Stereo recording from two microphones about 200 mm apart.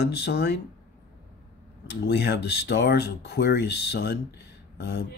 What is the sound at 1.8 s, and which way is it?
Speech, 60° left (ahead or behind).